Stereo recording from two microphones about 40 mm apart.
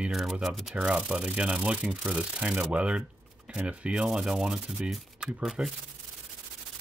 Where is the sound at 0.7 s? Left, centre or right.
Right.